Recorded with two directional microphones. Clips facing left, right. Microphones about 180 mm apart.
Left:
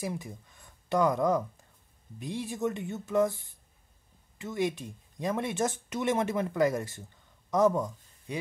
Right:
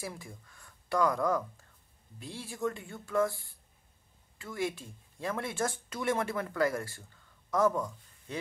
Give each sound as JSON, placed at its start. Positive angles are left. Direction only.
{"t": 0.0, "sound": "speech", "side_deg": 20}